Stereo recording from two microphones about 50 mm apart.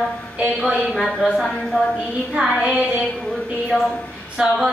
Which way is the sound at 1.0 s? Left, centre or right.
Centre.